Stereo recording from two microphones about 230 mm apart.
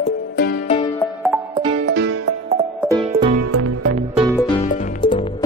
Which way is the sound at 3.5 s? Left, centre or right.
Right.